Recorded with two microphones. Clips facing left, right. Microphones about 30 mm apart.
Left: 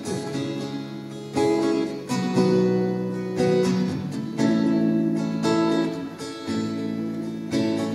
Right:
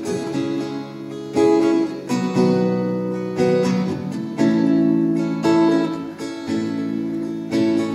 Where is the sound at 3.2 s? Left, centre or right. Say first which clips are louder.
Right 3 dB; right.